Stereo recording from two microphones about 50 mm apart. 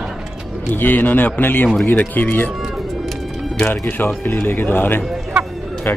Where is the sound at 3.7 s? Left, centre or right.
Left.